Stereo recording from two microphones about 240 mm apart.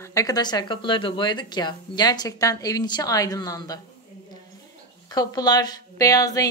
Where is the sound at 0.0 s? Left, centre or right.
Centre.